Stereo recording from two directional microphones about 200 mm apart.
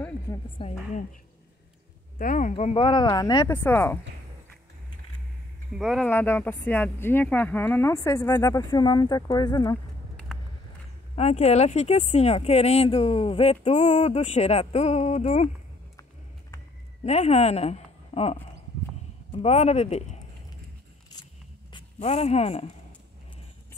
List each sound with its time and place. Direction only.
0.6 s speech: 30° left (ahead or behind)
2.1 s speech: 40° left (ahead or behind); by 4.0 s 10° left (ahead or behind)
5.8 s speech: centre (ahead or behind)
6.0 s speech: 10° left (ahead or behind)
11.1 s speech: 30° left (ahead or behind)
16.0 s a sound: 15° left (ahead or behind)
17.0 s a woman's voice: 35° left (ahead or behind)
21.7 s speech: 30° left (ahead or behind)